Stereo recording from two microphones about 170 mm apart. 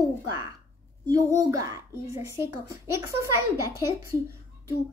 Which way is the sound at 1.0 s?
20° right (ahead or behind).